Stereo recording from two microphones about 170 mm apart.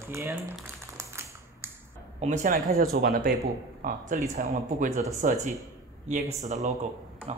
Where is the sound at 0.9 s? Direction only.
15° right (ahead or behind).